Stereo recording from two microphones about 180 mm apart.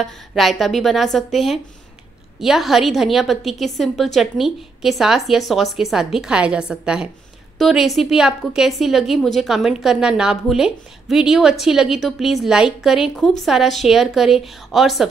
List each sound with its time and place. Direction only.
0.0 s a woman's voice: centre (ahead or behind)